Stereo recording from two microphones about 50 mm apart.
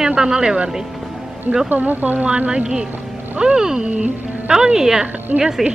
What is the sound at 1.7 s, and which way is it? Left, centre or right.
Speech, right.